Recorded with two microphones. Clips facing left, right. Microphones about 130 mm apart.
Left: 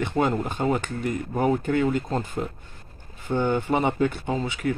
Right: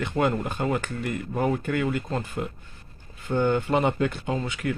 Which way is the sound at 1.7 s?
25° left (ahead or behind).